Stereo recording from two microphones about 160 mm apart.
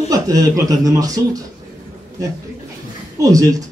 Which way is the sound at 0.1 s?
20° right (ahead or behind).